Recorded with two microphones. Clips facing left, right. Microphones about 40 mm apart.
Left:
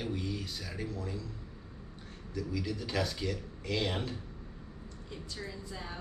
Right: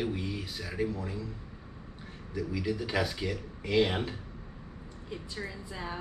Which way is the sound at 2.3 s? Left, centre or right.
Centre.